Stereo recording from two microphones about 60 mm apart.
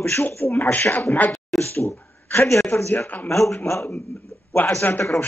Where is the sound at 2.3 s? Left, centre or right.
Left.